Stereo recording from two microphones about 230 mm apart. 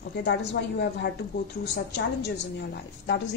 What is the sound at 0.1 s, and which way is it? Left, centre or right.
A woman's voice, left.